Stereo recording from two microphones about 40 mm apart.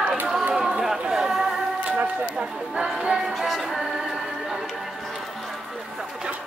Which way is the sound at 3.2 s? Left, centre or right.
Centre.